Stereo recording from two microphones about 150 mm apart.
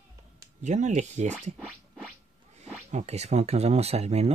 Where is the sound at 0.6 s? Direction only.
55° right (ahead or behind).